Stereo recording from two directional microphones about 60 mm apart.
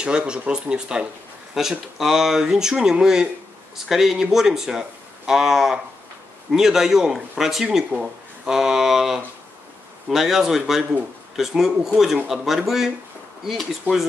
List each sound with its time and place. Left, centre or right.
0.0 s a man's voice: centre